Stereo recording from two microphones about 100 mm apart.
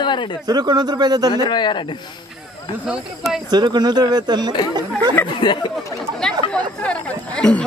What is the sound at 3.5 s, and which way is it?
A man's voice, 45° right (ahead or behind).